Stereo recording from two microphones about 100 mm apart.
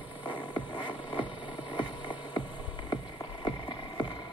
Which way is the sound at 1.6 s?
55° left (ahead or behind).